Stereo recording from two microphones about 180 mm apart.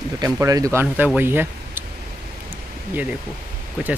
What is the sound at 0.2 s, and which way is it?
Speech, 20° right (ahead or behind).